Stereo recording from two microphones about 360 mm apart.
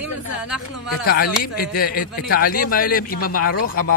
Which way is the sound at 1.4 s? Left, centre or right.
Left.